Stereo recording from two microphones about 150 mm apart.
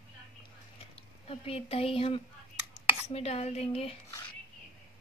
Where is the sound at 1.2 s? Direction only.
40° left (ahead or behind).